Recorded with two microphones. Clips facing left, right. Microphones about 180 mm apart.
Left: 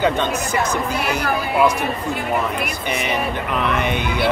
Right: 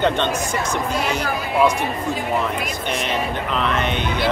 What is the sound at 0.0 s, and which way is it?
Speech, 5° left (ahead or behind).